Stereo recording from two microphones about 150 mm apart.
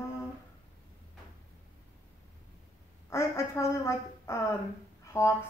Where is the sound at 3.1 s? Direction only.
20° left (ahead or behind).